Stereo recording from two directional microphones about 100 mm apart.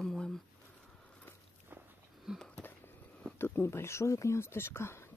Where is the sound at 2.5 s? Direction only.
20° left (ahead or behind).